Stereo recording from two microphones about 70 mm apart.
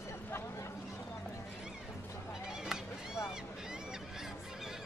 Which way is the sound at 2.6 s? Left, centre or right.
Centre.